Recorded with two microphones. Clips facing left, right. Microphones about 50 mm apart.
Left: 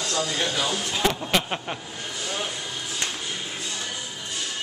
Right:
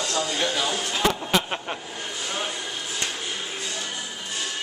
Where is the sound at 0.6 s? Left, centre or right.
Centre.